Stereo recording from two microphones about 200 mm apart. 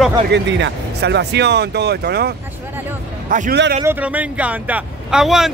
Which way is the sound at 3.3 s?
40° right (ahead or behind).